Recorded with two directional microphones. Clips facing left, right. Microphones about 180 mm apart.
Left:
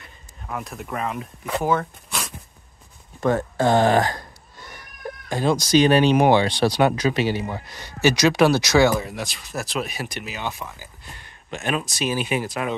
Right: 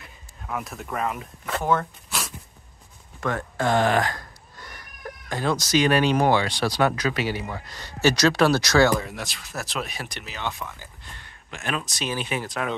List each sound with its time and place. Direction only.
0.5 s speech: centre (ahead or behind)
3.2 s a sound: 30° left (ahead or behind); by 5.7 s 15° left (ahead or behind)
5.7 s speech: 25° left (ahead or behind)
9.1 s speech: centre (ahead or behind)